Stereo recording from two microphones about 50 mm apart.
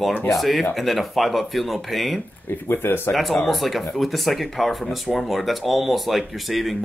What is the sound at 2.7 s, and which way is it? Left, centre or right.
Speech, left.